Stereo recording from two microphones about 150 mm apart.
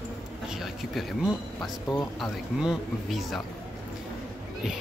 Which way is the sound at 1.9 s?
25° left (ahead or behind).